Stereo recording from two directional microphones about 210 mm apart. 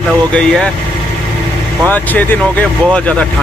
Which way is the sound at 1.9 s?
10° left (ahead or behind).